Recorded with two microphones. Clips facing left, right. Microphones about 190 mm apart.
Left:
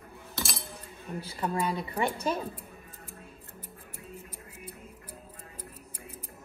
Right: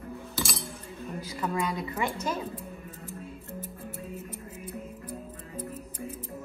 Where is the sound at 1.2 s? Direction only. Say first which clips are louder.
Even; 30° left (ahead or behind).